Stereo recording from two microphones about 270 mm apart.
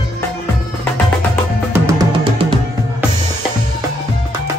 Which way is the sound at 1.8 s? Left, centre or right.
Centre.